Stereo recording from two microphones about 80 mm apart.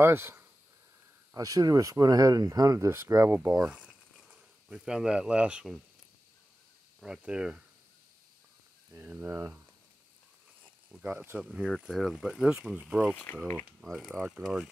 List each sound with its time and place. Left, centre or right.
0.0 s speech: right
1.3 s speech: right
3.3 s speech: right
3.6 s a sound: centre
7.0 s speech: centre
9.0 s speech: right
10.6 s speech: centre
11.9 s speech: centre
13.1 s speech: left
13.8 s speech: centre